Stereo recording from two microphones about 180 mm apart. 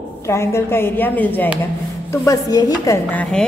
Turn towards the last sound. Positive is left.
turn(degrees=5)  # may be behind; listen again after turning